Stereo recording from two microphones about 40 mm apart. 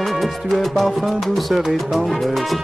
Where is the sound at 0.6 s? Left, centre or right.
Centre.